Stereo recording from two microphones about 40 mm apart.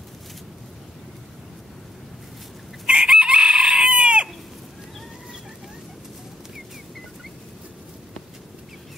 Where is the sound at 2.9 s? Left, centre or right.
Right.